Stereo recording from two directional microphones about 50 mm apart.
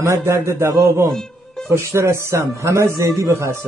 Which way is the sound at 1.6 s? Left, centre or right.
Right.